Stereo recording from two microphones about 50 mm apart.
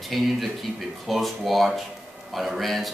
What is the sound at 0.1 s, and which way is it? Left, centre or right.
A man's voice, centre.